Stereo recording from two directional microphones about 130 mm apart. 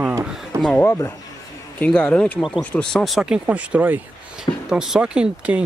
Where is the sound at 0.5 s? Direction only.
20° right (ahead or behind).